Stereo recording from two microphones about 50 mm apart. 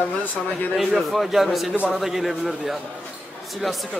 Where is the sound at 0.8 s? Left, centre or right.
Centre.